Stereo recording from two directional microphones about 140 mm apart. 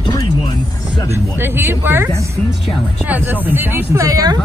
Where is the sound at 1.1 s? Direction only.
15° right (ahead or behind).